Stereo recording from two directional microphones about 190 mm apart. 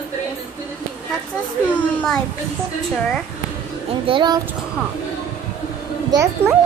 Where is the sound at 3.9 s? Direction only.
25° right (ahead or behind).